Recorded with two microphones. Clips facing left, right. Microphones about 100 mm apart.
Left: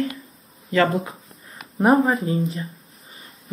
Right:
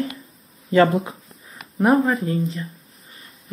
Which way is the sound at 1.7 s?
5° left (ahead or behind).